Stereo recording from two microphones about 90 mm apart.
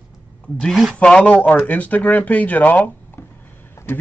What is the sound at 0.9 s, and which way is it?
Speech, 10° left (ahead or behind).